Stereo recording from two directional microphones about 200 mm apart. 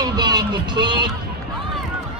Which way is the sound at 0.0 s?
20° right (ahead or behind).